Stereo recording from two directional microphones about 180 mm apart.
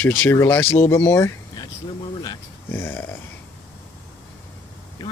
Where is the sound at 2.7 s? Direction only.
10° left (ahead or behind).